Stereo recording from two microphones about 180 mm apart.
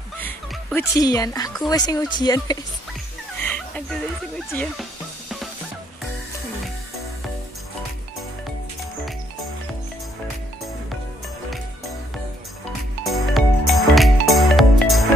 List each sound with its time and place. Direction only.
0.7 s speech: 20° left (ahead or behind)
3.4 s fowl: 5° left (ahead or behind)
13.0 s music: centre (ahead or behind)